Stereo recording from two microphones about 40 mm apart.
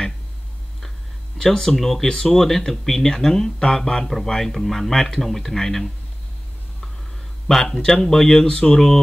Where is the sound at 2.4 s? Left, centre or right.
Centre.